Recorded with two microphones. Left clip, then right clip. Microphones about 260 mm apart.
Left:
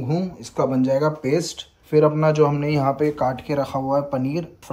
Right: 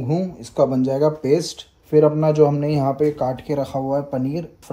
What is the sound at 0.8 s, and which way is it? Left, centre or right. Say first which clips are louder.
Speech: right 1 dB; centre.